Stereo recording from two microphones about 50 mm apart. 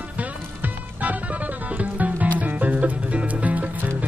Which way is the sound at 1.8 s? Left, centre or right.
Right.